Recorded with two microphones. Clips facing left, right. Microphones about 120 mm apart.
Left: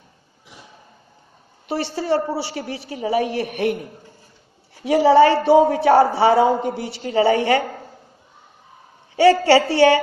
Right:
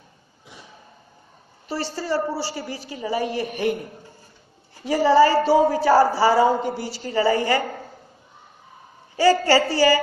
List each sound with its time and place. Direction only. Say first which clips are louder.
1.7 s a man's voice: left 4 dB; 65° left (ahead or behind)
4.8 s a woman's voice: left 3 dB; 65° left (ahead or behind)
9.1 s a man's voice: left 4 dB; 70° left (ahead or behind)